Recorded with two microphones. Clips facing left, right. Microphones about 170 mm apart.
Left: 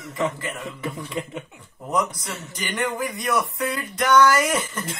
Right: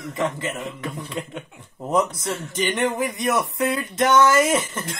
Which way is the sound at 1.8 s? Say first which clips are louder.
Right 3 dB; 25° right (ahead or behind).